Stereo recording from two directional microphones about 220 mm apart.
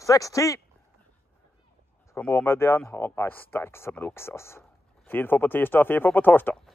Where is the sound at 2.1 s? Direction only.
10° left (ahead or behind).